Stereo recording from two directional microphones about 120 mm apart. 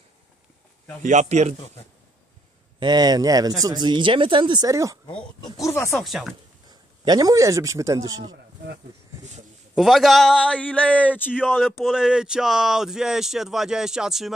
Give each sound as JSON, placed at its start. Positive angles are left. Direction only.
{"t": 1.0, "sound": "a man's voice", "side_deg": -75}
{"t": 2.8, "sound": "speech", "side_deg": -35}
{"t": 5.4, "sound": "speech", "side_deg": 25}
{"t": 5.9, "sound": "speech", "side_deg": 0}
{"t": 6.7, "sound": "a man's voice", "side_deg": -35}
{"t": 9.8, "sound": "speech", "side_deg": 0}
{"t": 10.5, "sound": "speech", "side_deg": 10}
{"t": 11.3, "sound": "speech", "side_deg": -5}